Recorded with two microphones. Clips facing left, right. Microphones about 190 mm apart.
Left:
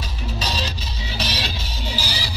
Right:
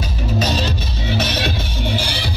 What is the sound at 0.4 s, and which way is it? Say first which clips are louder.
Music: right 8 dB; 50° right (ahead or behind).